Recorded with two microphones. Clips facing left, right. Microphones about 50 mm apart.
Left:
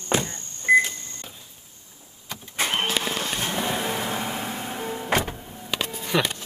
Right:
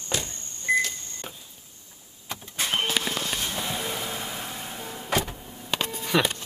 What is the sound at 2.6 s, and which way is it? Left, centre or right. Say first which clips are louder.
Vehicle: left 2 dB; left.